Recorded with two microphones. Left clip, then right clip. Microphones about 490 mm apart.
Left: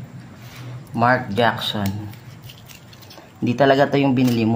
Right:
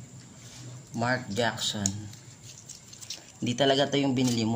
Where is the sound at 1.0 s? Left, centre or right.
Right.